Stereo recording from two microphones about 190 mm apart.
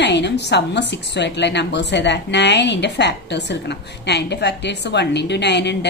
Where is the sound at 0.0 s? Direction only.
65° left (ahead or behind).